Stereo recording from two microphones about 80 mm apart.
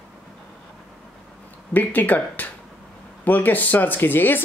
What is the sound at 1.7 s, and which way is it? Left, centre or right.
Speech, left.